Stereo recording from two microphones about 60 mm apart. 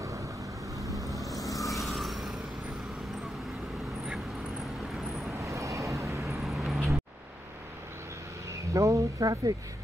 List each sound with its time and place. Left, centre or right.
0.0 s vehicle: right
1.1 s vehicle: centre
5.4 s vehicle: right
6.4 s vehicle: centre
8.7 s speech: right